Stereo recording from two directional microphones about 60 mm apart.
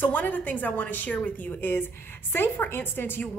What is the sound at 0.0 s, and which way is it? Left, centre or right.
A woman's voice, left.